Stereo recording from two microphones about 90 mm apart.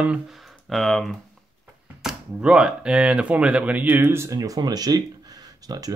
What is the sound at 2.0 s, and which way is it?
Speech, 10° right (ahead or behind).